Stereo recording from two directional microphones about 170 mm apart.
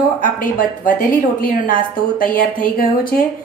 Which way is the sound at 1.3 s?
55° left (ahead or behind).